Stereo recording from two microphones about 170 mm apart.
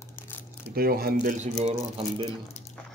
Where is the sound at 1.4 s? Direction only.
40° right (ahead or behind).